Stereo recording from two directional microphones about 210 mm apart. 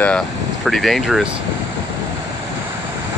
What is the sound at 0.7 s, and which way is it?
Speech, centre (ahead or behind).